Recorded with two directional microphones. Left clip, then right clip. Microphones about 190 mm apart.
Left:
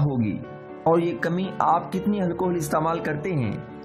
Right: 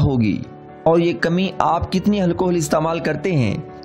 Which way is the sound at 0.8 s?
35° right (ahead or behind).